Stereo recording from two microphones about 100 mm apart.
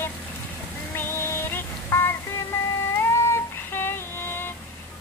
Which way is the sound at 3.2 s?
25° left (ahead or behind).